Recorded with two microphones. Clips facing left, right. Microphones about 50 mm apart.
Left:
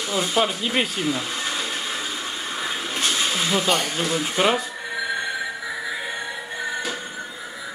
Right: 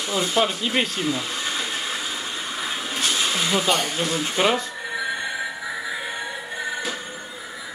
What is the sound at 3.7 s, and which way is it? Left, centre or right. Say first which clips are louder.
Speech: even; centre.